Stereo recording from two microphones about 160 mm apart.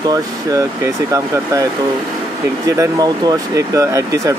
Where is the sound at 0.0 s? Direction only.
20° right (ahead or behind).